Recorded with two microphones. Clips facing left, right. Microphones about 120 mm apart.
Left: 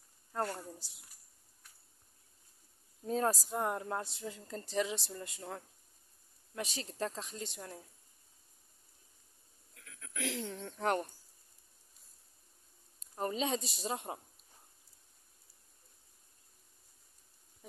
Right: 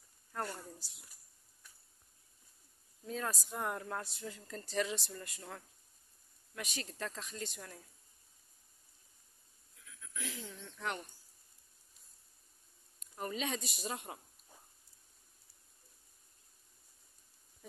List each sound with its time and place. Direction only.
0.3 s speech: 20° left (ahead or behind)
3.1 s speech: 35° left (ahead or behind)
9.8 s a sound: 70° left (ahead or behind)
10.5 s a woman's voice: 45° left (ahead or behind)
13.0 s speech: 30° left (ahead or behind)